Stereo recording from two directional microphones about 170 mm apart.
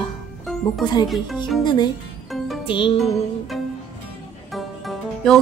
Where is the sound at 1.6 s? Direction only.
25° left (ahead or behind).